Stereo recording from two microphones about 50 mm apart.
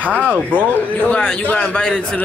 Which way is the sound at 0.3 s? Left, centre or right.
Right.